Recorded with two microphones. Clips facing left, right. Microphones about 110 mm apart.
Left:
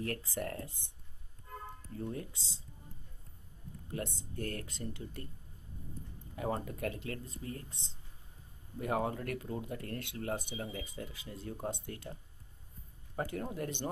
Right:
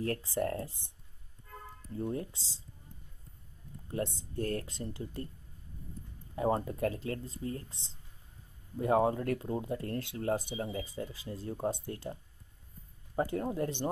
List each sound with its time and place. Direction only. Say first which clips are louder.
0.0 s speech: right 5 dB; 30° right (ahead or behind)
2.0 s speech: right 5 dB; 25° right (ahead or behind)
3.9 s speech: right 5 dB; 30° right (ahead or behind)
6.3 s speech: right 6 dB; 30° right (ahead or behind)
8.7 s speech: right 7 dB; 30° right (ahead or behind)